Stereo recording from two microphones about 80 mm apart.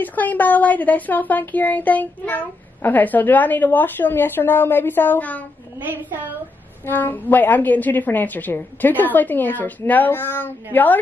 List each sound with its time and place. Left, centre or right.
0.0 s speech: left
6.9 s speech: left